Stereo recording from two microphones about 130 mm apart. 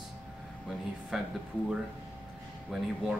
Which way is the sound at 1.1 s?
5° right (ahead or behind).